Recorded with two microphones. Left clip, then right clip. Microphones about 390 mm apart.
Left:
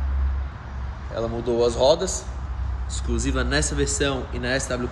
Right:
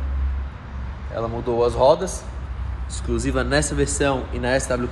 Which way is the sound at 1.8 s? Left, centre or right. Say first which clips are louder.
Right 3 dB; right.